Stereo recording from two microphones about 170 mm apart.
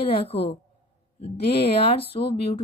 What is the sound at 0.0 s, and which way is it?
Speech, 35° left (ahead or behind).